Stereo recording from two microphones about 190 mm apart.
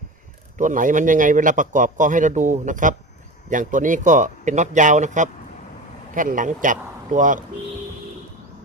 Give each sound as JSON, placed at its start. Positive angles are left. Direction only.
{"t": 0.6, "sound": "a man's voice", "side_deg": -45}